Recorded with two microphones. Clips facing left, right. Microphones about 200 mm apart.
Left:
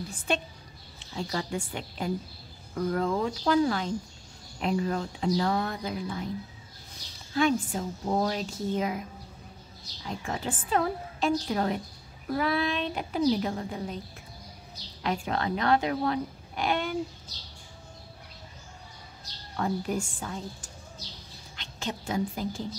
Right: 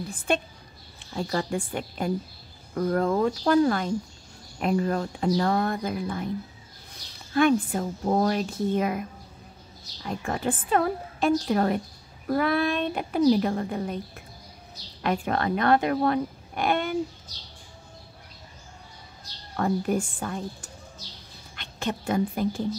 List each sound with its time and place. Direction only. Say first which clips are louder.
0.3 s a woman's voice: right 4 dB; 55° right (ahead or behind)
7.3 s speech: right 4 dB; 60° right (ahead or behind)
10.0 s speech: right 5 dB; 55° right (ahead or behind)
19.5 s a woman's voice: right 4 dB; 55° right (ahead or behind)